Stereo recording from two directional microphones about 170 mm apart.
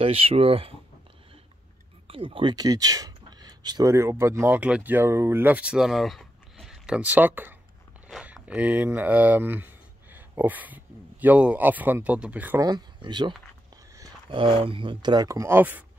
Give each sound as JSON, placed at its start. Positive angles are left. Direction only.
{"t": 0.0, "sound": "speech", "side_deg": -35}
{"t": 2.0, "sound": "speech", "side_deg": -35}
{"t": 12.6, "sound": "speech", "side_deg": -25}